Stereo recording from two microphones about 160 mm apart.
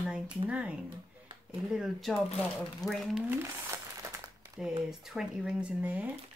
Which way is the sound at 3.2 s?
15° right (ahead or behind).